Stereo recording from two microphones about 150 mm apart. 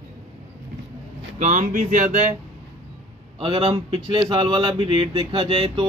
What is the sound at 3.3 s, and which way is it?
Speech, 35° right (ahead or behind).